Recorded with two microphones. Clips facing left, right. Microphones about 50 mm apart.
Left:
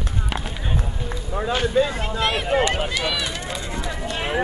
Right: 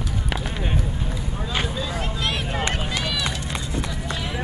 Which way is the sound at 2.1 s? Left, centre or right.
Left.